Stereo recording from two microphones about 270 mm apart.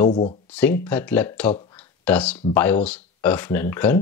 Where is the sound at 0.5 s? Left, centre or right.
Centre.